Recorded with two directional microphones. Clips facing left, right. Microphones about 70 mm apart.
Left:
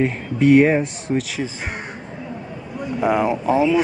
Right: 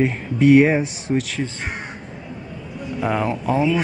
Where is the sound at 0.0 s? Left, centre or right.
Centre.